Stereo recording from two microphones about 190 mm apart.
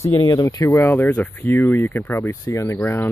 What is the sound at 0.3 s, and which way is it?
Speech, 20° left (ahead or behind).